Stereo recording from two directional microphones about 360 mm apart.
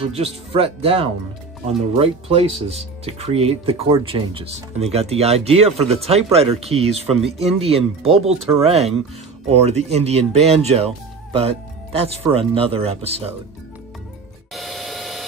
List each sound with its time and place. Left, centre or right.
0.0 s speech: centre
14.5 s printer: centre